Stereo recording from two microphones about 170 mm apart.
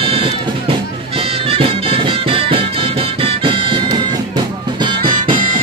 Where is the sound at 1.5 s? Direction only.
35° right (ahead or behind).